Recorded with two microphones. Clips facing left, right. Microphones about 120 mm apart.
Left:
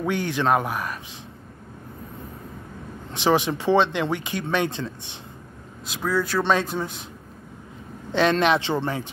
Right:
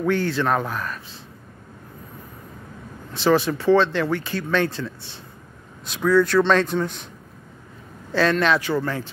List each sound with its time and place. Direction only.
0.0 s speech: 15° left (ahead or behind)
3.1 s speech: 15° left (ahead or behind)
5.9 s speech: centre (ahead or behind)
8.1 s speech: 20° left (ahead or behind)